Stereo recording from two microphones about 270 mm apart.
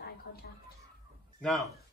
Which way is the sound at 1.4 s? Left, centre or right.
Centre.